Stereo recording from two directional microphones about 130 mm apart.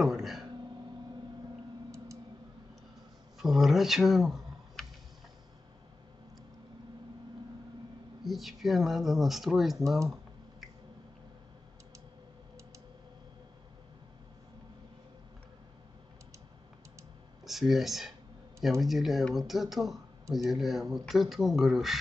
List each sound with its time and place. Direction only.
0.0 s speech: centre (ahead or behind)
3.3 s speech: centre (ahead or behind)
8.2 s speech: centre (ahead or behind)
17.5 s speech: centre (ahead or behind)